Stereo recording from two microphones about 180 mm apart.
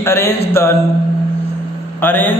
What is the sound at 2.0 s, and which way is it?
Speech, 10° left (ahead or behind).